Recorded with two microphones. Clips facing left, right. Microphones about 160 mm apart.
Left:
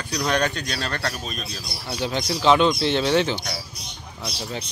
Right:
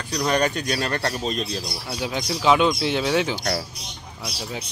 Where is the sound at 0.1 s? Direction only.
5° right (ahead or behind); by 1.6 s 25° right (ahead or behind).